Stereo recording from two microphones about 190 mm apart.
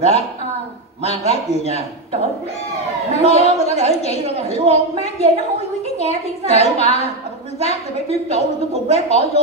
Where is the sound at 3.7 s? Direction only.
35° left (ahead or behind).